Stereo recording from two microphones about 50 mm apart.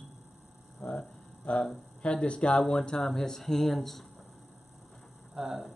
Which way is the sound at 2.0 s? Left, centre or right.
Left.